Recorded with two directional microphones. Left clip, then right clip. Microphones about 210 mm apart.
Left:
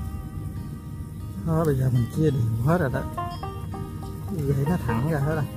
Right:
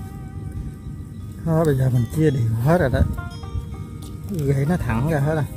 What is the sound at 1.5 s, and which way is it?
Speech, 30° right (ahead or behind).